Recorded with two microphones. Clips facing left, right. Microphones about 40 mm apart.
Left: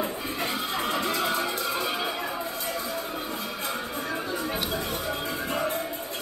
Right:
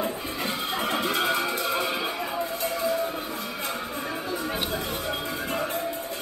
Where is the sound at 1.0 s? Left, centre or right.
Right.